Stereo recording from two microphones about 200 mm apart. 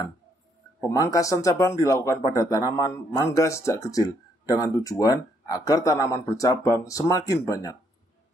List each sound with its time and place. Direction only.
0.7 s speech: 15° left (ahead or behind)